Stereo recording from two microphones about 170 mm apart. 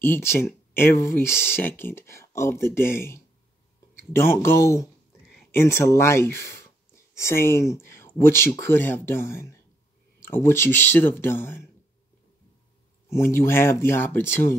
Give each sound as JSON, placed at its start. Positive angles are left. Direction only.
{"t": 0.0, "sound": "speech", "side_deg": 15}
{"t": 13.1, "sound": "speech", "side_deg": 15}